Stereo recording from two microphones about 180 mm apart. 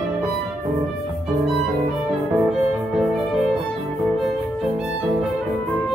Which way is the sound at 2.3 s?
Centre (ahead or behind).